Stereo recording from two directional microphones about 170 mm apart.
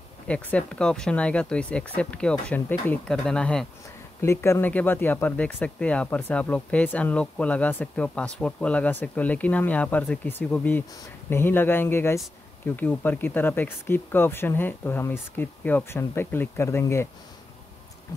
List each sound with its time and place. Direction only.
0.3 s speech: 10° left (ahead or behind)
4.2 s speech: 15° left (ahead or behind)